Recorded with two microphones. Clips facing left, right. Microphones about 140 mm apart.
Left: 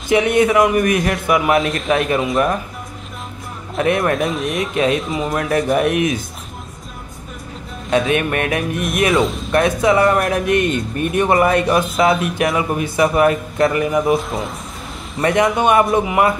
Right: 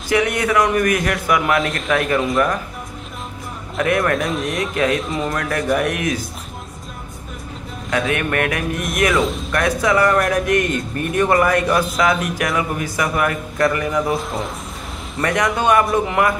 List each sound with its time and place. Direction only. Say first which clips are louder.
0.1 s speech: left 4 dB; 25° left (ahead or behind)
1.6 s speech: left 2 dB; centre (ahead or behind)
1.9 s speech: left 1 dB; 25° left (ahead or behind)
3.7 s speech: left 1 dB; 25° left (ahead or behind)
4.9 s speech: left 1 dB; centre (ahead or behind)
5.3 s speech: left 4 dB; 25° left (ahead or behind)
8.1 s speech: left 2 dB; 20° left (ahead or behind)
15.2 s speech: left 3 dB; 25° left (ahead or behind)